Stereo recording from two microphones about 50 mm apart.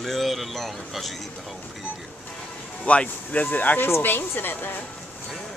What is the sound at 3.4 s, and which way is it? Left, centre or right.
Speech, left.